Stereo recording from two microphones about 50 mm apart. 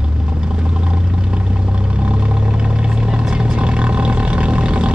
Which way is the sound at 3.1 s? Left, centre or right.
Centre.